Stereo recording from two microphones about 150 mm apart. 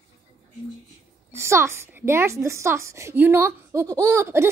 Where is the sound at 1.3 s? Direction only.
20° right (ahead or behind).